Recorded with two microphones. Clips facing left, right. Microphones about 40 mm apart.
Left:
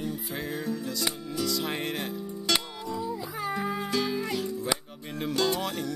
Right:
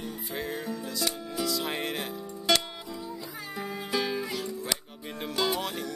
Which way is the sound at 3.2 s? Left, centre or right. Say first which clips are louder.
Left 6 dB; centre.